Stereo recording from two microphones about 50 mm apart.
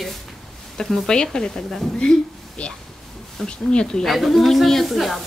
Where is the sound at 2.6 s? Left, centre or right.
Left.